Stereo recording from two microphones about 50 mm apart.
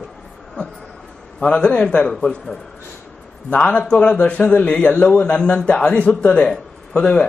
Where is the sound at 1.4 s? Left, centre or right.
Left.